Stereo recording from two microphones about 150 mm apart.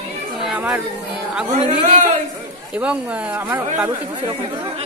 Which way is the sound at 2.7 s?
5° right (ahead or behind).